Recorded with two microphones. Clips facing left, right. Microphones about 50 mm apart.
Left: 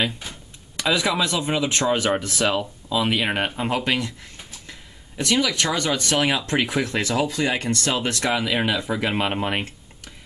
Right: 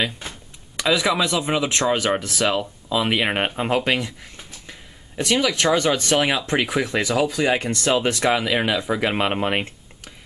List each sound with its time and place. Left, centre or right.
0.7 s speech: centre
2.1 s speech: centre; by 6.1 s right
6.1 s speech: centre